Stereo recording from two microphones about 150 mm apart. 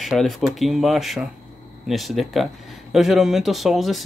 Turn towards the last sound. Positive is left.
turn(degrees=0)  # may be behind; listen again after turning